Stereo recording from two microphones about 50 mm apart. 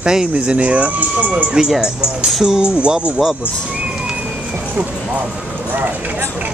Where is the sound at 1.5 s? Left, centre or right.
Centre.